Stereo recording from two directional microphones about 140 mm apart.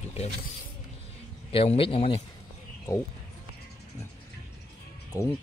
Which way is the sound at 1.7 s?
40° left (ahead or behind).